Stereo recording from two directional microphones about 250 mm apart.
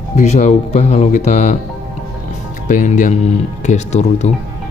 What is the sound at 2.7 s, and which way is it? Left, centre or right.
Speech, left.